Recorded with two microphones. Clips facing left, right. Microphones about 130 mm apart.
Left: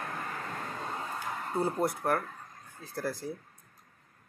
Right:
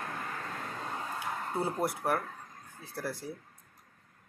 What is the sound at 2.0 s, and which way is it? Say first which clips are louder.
Speech: left 1 dB; 5° right (ahead or behind).